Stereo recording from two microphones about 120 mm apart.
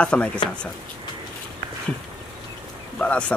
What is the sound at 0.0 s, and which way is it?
Speech, 10° left (ahead or behind).